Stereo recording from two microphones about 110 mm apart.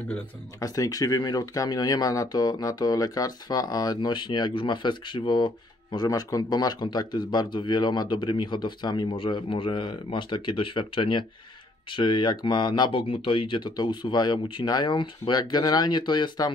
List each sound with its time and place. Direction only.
0.6 s speech: 35° left (ahead or behind)
13.0 s speech: 55° left (ahead or behind)